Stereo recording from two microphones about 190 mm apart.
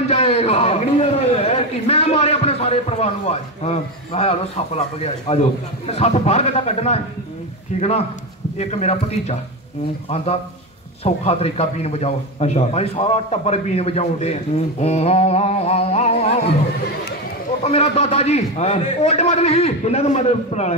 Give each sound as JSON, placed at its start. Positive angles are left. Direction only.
{"t": 0.1, "sound": "a sound", "side_deg": 35}
{"t": 5.9, "sound": "speech", "side_deg": 35}
{"t": 17.6, "sound": "speech", "side_deg": 35}